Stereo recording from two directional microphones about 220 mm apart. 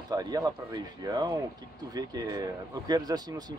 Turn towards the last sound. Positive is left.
turn(degrees=-15)  # may be behind; listen again after turning